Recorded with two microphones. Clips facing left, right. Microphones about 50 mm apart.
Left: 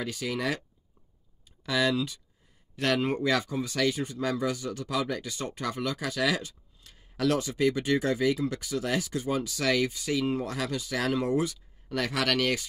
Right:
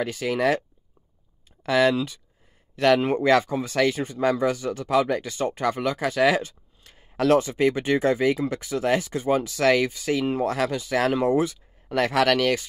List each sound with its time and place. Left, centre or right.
0.0 s speech: right
1.7 s speech: right